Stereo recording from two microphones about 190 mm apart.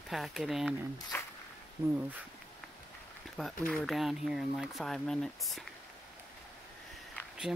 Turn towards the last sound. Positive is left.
turn(degrees=0)  # may be behind; listen again after turning